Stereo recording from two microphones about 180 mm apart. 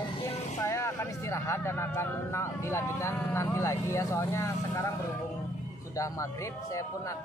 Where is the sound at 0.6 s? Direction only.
15° left (ahead or behind).